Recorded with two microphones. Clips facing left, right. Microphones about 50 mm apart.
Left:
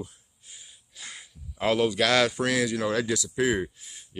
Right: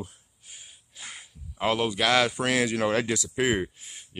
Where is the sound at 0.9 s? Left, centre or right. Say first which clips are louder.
Even; right.